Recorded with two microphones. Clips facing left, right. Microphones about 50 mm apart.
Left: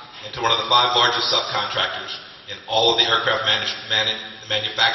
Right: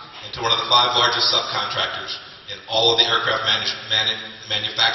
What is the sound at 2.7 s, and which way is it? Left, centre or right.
A man's voice, centre.